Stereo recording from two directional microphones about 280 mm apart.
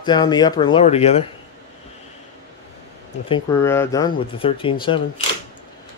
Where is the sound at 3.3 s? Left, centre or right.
Centre.